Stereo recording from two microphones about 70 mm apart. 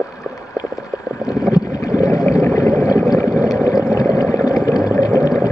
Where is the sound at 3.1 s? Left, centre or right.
Left.